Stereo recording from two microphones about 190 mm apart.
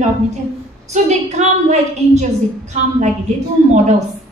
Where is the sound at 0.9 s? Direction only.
35° right (ahead or behind).